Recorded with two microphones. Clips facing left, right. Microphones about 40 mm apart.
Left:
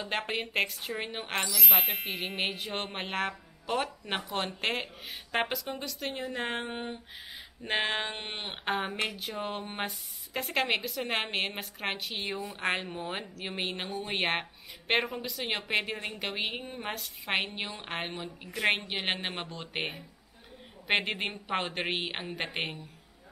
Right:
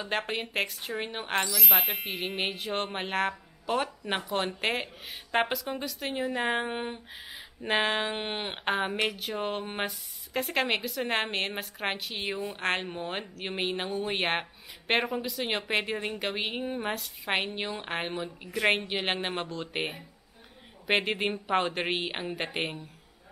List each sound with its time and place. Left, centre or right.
0.0 s speech: centre
7.3 s speech: centre
9.8 s speech: centre